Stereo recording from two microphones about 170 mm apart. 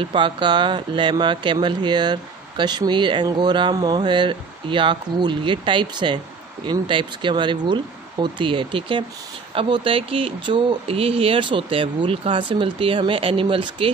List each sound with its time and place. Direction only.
0.0 s speech: 30° right (ahead or behind)